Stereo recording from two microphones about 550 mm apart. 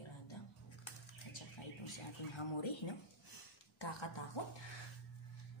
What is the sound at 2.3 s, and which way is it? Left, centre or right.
Speech, left.